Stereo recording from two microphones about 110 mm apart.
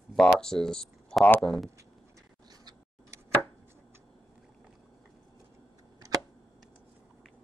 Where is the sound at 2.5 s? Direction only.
35° right (ahead or behind).